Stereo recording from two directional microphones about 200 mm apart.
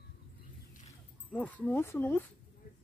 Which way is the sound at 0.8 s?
5° left (ahead or behind).